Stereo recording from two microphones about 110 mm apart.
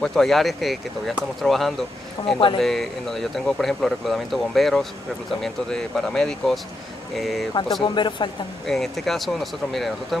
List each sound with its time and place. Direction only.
0.0 s speech: 5° left (ahead or behind)
2.3 s speech: 50° left (ahead or behind)
2.6 s speech: 5° left (ahead or behind)
7.8 s speech: 45° left (ahead or behind)
8.6 s speech: 5° left (ahead or behind)